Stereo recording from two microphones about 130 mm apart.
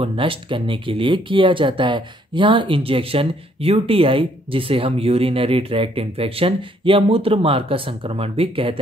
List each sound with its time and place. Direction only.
0.0 s speech: 45° right (ahead or behind)